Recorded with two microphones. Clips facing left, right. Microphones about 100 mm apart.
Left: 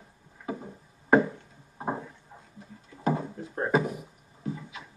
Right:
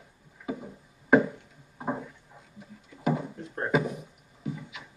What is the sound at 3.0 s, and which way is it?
Drawer open or close, 30° left (ahead or behind).